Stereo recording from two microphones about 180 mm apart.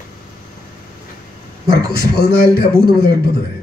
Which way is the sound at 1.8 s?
60° left (ahead or behind).